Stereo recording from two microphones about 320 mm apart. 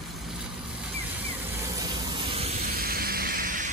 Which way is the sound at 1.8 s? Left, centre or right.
Centre.